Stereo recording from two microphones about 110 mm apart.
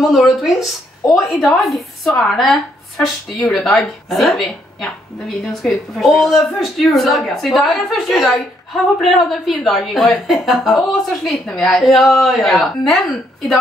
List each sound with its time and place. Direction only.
0.0 s a woman's voice: centre (ahead or behind)